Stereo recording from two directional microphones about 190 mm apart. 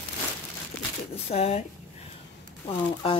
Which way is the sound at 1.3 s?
35° left (ahead or behind).